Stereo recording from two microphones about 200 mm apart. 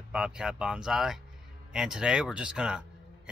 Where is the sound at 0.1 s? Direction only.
5° right (ahead or behind).